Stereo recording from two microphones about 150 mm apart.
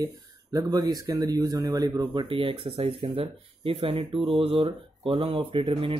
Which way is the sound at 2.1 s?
35° right (ahead or behind).